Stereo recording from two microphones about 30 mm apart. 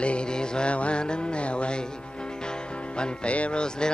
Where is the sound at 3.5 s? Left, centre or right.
Left.